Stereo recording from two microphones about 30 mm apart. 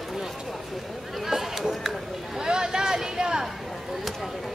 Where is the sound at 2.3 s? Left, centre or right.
Right.